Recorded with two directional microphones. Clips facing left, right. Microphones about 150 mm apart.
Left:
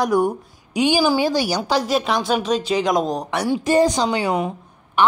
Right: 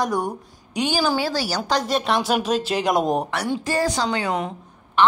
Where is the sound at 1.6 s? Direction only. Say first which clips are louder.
Left 2 dB; 5° left (ahead or behind).